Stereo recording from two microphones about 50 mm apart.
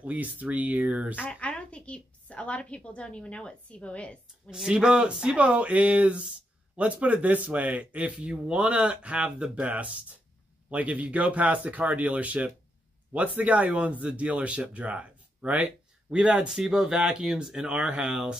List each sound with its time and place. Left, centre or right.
0.0 s speech: right
1.1 s a woman's voice: left
4.6 s speech: centre
16.2 s speech: centre